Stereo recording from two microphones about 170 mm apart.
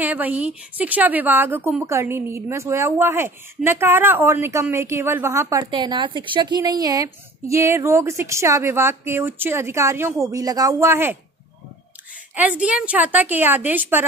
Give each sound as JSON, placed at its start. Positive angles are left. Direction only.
{"t": 0.0, "sound": "a woman's voice", "side_deg": -10}
{"t": 12.4, "sound": "a woman's voice", "side_deg": -5}